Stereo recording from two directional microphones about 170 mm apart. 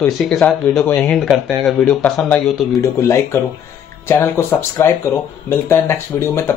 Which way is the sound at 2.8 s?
15° left (ahead or behind).